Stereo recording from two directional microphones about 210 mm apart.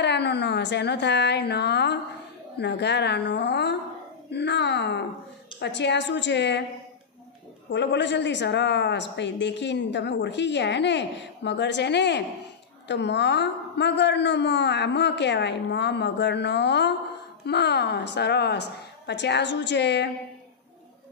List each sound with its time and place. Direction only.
0.0 s a woman's voice: 55° left (ahead or behind)
7.7 s a woman's voice: 55° left (ahead or behind)